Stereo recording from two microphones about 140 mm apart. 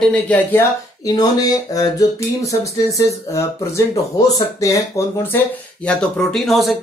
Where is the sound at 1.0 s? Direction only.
25° left (ahead or behind).